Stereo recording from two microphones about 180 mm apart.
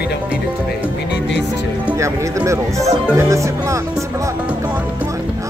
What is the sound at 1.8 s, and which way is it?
Speech, 15° right (ahead or behind).